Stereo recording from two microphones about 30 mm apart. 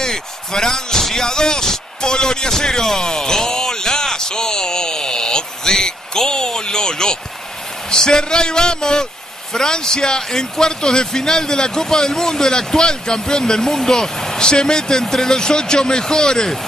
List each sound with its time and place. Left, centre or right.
0.0 s slam: centre
1.0 s speech: centre
3.1 s a sound: left
7.9 s speech: left